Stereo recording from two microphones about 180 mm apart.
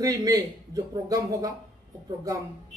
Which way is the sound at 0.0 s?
20° right (ahead or behind).